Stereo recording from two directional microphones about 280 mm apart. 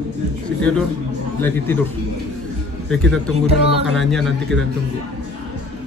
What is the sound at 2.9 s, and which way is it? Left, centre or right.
Speech, centre.